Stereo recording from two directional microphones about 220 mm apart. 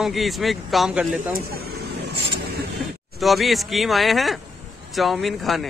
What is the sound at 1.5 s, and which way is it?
Speech, 45° right (ahead or behind).